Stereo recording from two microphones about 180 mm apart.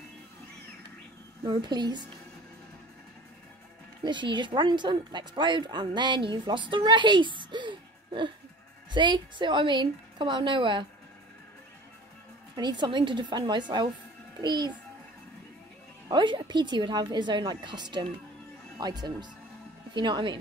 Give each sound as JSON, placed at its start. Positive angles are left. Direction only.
{"t": 1.4, "sound": "a woman's voice", "side_deg": -25}
{"t": 4.0, "sound": "a woman's voice", "side_deg": -25}
{"t": 12.5, "sound": "a woman's voice", "side_deg": -25}
{"t": 16.1, "sound": "a woman's voice", "side_deg": -25}